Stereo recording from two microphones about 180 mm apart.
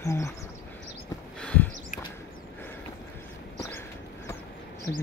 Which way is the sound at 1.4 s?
10° left (ahead or behind).